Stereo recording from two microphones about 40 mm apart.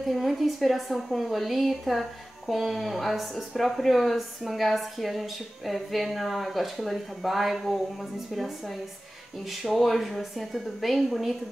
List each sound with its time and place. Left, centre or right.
0.0 s a woman's voice: centre
9.6 s a woman's voice: centre